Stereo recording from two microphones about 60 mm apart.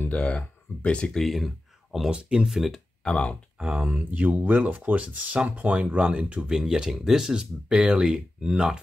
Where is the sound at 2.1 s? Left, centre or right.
Centre.